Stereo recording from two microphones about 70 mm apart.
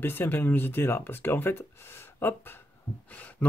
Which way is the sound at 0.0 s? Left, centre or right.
Left.